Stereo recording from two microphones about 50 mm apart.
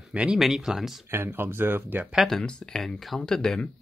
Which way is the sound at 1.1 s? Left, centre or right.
Right.